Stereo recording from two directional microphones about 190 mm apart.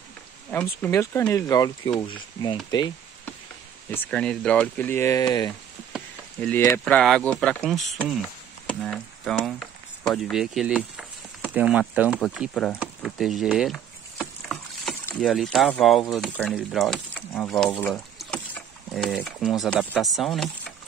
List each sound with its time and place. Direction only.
0.5 s speech: 10° left (ahead or behind)
3.9 s speech: 5° left (ahead or behind)
5.9 s a sound: 5° left (ahead or behind)
6.6 s speech: 5° left (ahead or behind)
12.2 s speech: 5° left (ahead or behind)
12.7 s a sound: 5° right (ahead or behind)
15.0 s speech: centre (ahead or behind)